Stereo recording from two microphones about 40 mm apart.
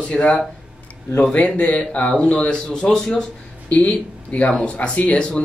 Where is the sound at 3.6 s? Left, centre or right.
Left.